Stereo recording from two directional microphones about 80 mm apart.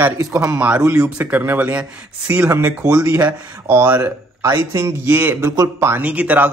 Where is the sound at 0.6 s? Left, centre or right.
Centre; by 6.0 s right.